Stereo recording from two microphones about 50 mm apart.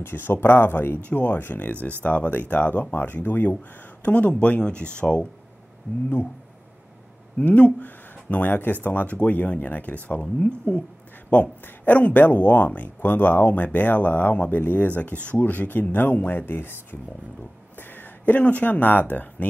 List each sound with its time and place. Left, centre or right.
0.0 s speech: left
1.0 s speech: left
7.3 s speech: left
17.7 s speech: left